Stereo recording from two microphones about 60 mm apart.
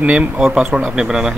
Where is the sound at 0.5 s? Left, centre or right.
Centre.